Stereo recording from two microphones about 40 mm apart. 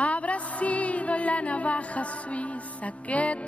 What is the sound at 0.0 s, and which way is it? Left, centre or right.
Music, left.